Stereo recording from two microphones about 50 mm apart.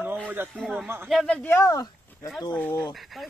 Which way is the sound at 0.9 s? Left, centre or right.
Right.